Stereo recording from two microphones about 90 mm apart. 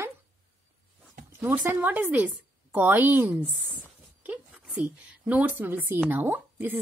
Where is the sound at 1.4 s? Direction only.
20° right (ahead or behind).